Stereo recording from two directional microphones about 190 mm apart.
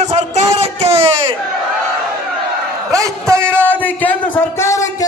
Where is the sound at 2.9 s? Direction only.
15° right (ahead or behind).